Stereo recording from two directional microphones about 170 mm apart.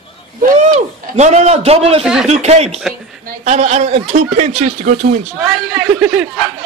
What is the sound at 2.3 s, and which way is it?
A man's voice, 40° right (ahead or behind).